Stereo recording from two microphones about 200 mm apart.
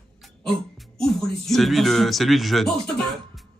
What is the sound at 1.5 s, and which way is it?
Speech, centre (ahead or behind).